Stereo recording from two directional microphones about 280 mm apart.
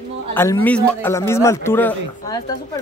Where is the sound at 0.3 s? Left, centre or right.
Centre.